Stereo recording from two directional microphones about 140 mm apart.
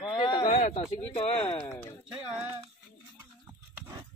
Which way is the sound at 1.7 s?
15° left (ahead or behind).